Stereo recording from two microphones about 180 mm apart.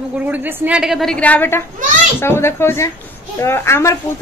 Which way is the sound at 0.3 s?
5° right (ahead or behind).